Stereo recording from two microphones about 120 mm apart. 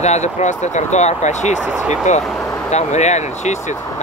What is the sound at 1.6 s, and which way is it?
Speech, 10° right (ahead or behind).